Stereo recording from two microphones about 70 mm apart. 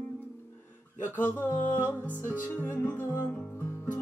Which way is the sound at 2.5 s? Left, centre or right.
Left.